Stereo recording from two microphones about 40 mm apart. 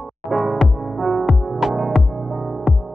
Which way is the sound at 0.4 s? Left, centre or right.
Centre.